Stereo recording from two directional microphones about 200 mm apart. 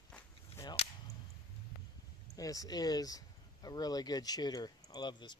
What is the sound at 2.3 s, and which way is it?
Speech, 15° left (ahead or behind).